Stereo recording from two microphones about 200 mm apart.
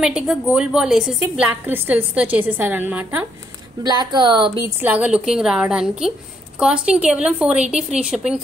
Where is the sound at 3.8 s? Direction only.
20° right (ahead or behind).